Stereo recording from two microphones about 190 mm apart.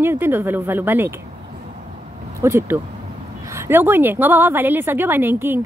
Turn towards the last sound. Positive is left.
turn(degrees=-10)  # may be behind; listen again after turning